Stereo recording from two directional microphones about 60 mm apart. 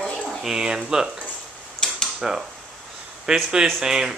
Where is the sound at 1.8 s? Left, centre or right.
Centre.